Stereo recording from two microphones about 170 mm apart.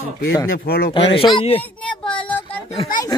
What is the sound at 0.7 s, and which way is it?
Speech, 65° left (ahead or behind).